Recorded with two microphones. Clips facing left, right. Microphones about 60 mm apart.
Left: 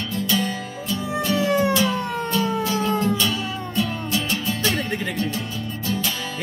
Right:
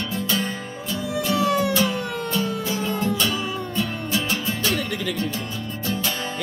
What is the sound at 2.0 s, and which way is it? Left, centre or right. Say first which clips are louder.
Music: left 2 dB; left.